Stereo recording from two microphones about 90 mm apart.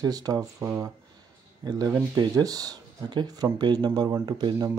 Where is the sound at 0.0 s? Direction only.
45° right (ahead or behind).